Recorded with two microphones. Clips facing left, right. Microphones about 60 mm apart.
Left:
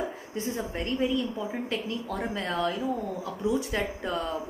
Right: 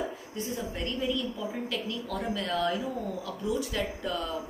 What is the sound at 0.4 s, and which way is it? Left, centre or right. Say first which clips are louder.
Speech: left 2 dB; left.